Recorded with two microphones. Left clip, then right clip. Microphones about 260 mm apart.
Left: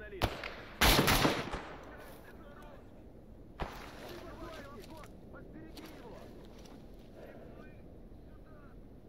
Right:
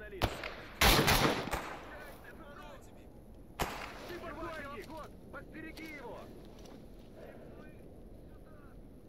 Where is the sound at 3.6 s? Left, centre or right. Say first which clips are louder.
Right 6 dB; right.